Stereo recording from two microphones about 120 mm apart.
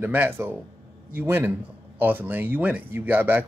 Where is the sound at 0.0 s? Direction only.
15° right (ahead or behind).